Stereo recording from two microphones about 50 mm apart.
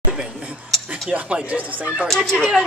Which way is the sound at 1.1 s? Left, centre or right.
Right.